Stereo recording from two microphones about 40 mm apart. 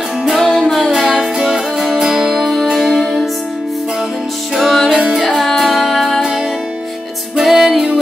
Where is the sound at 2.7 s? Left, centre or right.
Centre.